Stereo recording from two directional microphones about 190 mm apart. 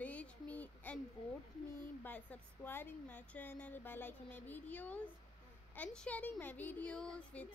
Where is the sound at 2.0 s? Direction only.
10° left (ahead or behind).